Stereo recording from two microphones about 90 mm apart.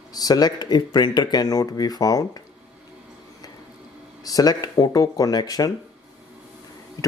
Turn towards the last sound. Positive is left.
turn(degrees=45)  # may be behind; listen again after turning